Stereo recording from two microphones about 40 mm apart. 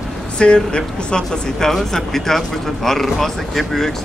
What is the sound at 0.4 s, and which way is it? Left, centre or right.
Speech, left.